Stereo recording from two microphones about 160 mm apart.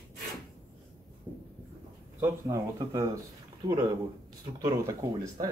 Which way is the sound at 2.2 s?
20° right (ahead or behind).